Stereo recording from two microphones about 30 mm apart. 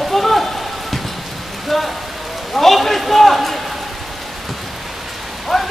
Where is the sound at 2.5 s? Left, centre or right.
Centre.